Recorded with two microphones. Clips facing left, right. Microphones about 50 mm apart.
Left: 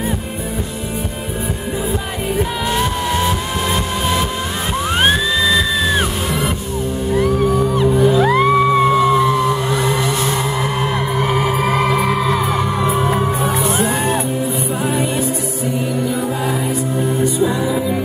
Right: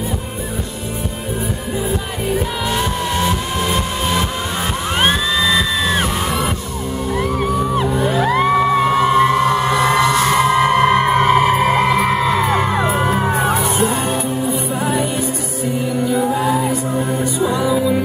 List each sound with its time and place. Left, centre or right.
2.7 s music: centre
7.5 s music: right
8.2 s music: centre
9.0 s music: right
12.9 s music: right
16.2 s music: right